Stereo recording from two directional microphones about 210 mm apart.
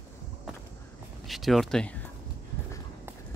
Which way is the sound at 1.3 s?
Centre (ahead or behind).